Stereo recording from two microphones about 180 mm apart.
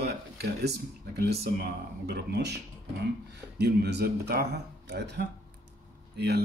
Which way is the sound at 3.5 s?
65° right (ahead or behind).